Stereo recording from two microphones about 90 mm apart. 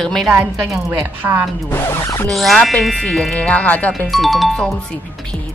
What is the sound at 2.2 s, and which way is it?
Speech, centre (ahead or behind).